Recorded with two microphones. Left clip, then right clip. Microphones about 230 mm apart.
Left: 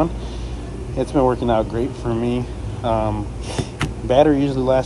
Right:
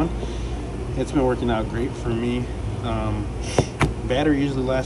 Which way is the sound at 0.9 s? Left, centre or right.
Centre.